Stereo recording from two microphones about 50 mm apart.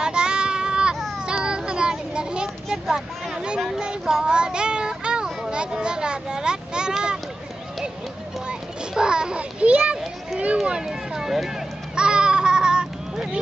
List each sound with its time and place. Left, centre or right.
0.0 s child singing: centre
1.2 s a sound: centre
3.4 s speech: centre
8.5 s a child's voice: centre
10.6 s speech: centre
11.9 s a sound: centre